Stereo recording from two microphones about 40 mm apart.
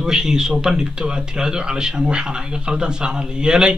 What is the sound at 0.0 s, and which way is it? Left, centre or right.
A man's voice, centre.